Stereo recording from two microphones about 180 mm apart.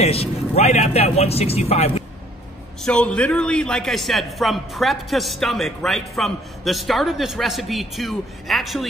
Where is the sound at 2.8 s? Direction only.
5° left (ahead or behind).